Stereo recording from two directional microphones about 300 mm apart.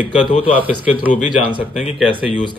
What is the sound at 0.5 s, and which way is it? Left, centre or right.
Speech, centre.